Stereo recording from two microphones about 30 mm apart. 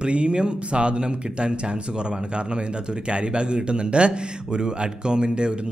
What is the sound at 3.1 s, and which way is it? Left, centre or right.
A man's voice, right.